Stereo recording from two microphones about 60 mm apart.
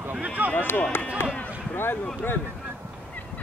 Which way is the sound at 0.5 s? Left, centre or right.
Left.